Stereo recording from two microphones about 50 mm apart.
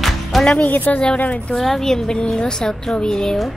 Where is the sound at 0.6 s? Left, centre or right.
Left.